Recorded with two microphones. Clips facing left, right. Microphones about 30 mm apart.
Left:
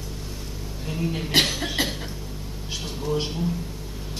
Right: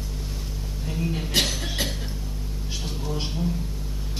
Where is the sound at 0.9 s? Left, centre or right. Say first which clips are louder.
Left 1 dB; centre.